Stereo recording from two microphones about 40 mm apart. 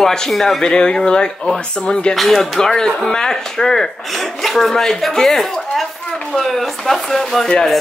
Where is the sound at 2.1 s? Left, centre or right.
Centre.